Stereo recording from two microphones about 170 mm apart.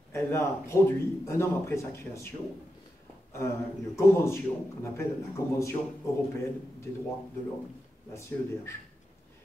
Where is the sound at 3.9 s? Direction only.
15° left (ahead or behind).